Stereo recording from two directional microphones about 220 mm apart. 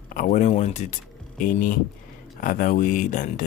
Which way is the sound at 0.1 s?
35° left (ahead or behind).